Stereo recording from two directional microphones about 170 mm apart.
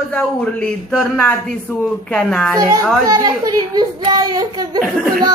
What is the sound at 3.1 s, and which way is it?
A woman's voice, 20° right (ahead or behind).